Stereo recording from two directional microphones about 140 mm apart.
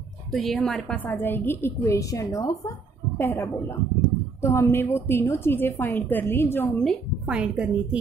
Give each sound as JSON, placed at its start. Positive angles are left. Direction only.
{"t": 0.3, "sound": "a woman's voice", "side_deg": 0}
{"t": 7.2, "sound": "a woman's voice", "side_deg": -5}